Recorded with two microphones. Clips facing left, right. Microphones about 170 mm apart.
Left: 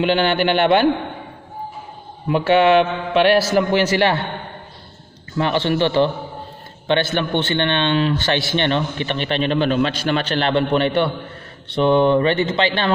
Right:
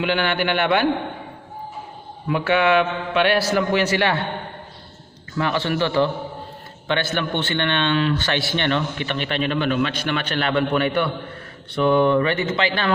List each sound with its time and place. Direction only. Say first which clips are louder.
0.0 s a man's voice: left 4 dB; 30° left (ahead or behind)
2.2 s a man's voice: left 4 dB; 30° left (ahead or behind)
5.4 s a man's voice: left 4 dB; 25° left (ahead or behind)